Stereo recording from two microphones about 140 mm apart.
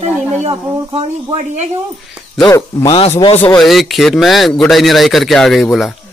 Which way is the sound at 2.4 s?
25° left (ahead or behind).